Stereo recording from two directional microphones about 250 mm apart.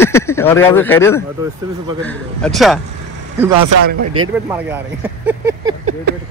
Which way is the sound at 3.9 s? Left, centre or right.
Right.